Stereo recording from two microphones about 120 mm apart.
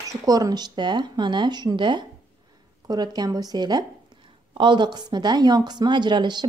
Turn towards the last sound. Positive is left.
turn(degrees=-40)  # may be behind; listen again after turning